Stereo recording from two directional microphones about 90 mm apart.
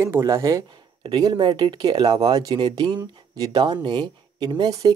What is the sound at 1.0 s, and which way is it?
Speech, 50° right (ahead or behind).